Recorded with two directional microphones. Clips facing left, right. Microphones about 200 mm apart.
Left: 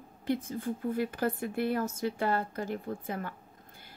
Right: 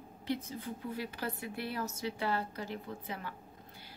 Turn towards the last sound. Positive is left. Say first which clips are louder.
# left 6 dB
turn(degrees=50)  # may be behind; listen again after turning